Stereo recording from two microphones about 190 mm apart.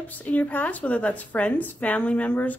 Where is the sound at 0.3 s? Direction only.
10° left (ahead or behind).